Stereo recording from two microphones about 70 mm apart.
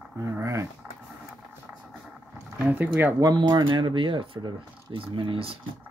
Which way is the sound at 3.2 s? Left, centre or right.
Right.